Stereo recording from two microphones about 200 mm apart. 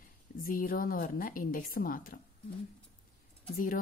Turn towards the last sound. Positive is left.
turn(degrees=45)  # may be behind; listen again after turning